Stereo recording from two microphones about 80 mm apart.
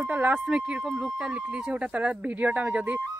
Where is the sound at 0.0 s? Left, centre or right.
Right.